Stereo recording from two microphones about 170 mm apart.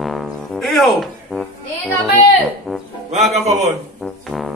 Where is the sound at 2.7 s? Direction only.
5° right (ahead or behind).